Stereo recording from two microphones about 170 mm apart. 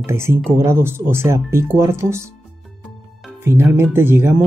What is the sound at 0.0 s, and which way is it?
Speech, 15° right (ahead or behind).